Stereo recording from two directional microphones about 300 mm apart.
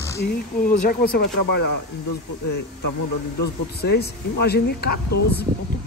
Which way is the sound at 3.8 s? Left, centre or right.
Left.